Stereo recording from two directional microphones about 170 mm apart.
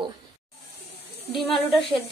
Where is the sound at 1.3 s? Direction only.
Centre (ahead or behind).